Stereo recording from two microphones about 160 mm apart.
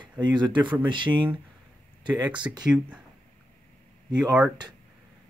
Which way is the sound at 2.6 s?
5° right (ahead or behind).